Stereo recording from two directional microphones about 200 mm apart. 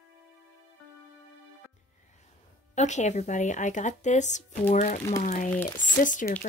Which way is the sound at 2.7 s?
35° left (ahead or behind).